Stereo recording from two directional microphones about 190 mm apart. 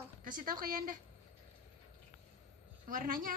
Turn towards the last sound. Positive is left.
turn(degrees=-45)  # may be behind; listen again after turning